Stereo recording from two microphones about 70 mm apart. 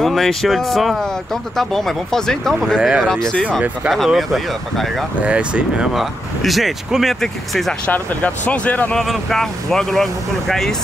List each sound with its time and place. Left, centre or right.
0.0 s speech: centre
2.7 s speech: centre
3.1 s speech: centre
5.2 s speech: centre
5.9 s speech: centre
7.8 s speech: left
8.9 s speech: centre